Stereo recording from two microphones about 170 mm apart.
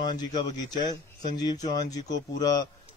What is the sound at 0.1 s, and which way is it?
Speech, 25° left (ahead or behind).